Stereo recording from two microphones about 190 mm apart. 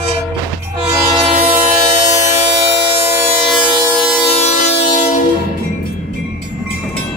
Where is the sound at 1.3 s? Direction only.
35° right (ahead or behind).